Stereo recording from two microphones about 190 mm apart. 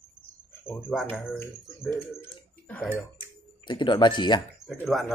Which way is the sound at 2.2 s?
10° left (ahead or behind).